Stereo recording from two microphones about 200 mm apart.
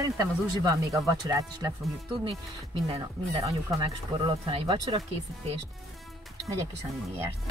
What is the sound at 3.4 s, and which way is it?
Speech, 25° right (ahead or behind).